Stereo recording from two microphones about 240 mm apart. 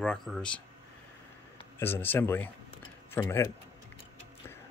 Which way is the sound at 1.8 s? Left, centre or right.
Centre.